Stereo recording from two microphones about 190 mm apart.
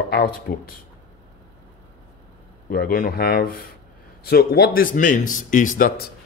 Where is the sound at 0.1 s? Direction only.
50° left (ahead or behind).